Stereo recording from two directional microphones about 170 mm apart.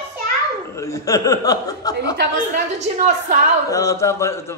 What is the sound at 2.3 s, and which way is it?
A woman's voice, 50° right (ahead or behind).